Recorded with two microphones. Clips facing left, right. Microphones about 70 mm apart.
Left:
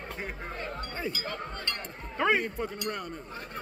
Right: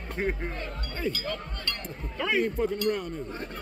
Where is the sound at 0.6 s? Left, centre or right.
Centre.